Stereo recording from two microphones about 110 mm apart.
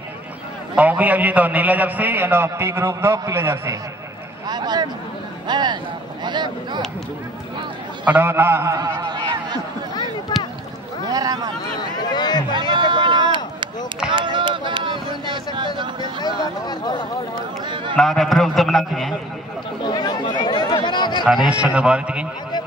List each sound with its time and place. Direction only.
0.7 s a man's voice: 15° right (ahead or behind)
4.5 s a sound: 40° right (ahead or behind)
5.5 s speech: 40° right (ahead or behind)
8.0 s a man's voice: 15° right (ahead or behind)
9.0 s a sound: 40° right (ahead or behind)
10.3 s boat: 40° left (ahead or behind)
11.1 s speech: 35° right (ahead or behind)
12.0 s speech: 40° left (ahead or behind)
12.5 s a sound: 50° right (ahead or behind)
16.2 s a sound: 40° left (ahead or behind)
17.9 s a man's voice: 5° left (ahead or behind)
19.8 s chatter: 40° left (ahead or behind)
21.5 s a man's voice: 10° right (ahead or behind)